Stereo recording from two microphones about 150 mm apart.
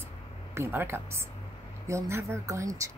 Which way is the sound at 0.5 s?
15° right (ahead or behind).